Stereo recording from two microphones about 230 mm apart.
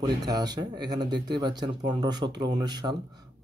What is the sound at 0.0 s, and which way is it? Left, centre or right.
Speech, centre.